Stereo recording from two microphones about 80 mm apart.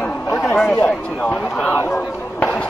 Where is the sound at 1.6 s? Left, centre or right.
Left.